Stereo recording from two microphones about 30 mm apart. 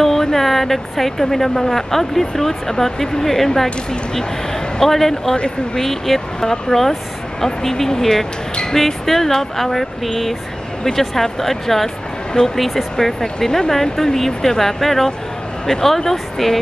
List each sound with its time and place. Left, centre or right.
0.0 s speech: centre